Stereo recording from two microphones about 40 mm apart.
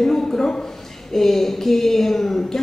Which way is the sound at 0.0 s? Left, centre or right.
Centre.